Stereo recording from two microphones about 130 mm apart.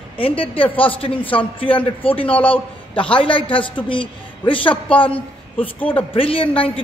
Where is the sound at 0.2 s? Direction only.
45° left (ahead or behind).